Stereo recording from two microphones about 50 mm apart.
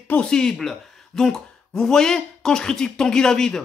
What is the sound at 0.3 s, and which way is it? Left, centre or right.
Speech, centre.